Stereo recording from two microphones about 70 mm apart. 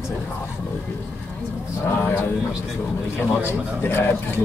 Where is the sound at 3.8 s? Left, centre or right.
Left.